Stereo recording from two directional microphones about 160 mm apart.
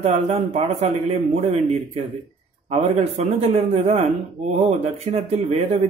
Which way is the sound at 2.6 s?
40° right (ahead or behind).